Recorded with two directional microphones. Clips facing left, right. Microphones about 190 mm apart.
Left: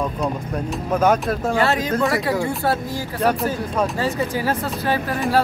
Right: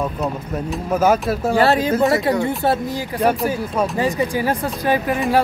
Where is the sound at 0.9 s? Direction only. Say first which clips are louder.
Right 1 dB; 5° right (ahead or behind).